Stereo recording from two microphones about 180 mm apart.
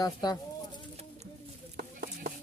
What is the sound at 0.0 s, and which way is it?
Speech, 20° left (ahead or behind).